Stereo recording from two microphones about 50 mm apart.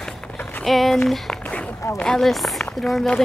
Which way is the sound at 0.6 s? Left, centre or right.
Centre.